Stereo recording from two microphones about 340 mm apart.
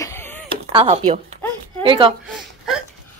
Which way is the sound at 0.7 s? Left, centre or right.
Centre.